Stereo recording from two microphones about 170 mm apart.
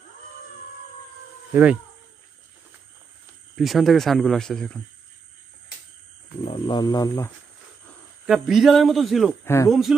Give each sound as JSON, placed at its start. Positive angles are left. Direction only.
{"t": 1.5, "sound": "speech", "side_deg": -10}
{"t": 3.5, "sound": "speech", "side_deg": 0}
{"t": 6.4, "sound": "speech", "side_deg": 30}
{"t": 8.3, "sound": "speech", "side_deg": 0}
{"t": 9.4, "sound": "speech", "side_deg": 15}
{"t": 9.7, "sound": "speech", "side_deg": 0}